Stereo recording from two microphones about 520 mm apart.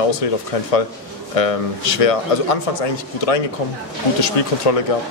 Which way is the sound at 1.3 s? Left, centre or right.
Left.